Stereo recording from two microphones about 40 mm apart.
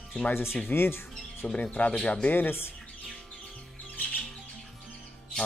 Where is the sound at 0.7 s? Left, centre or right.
Left.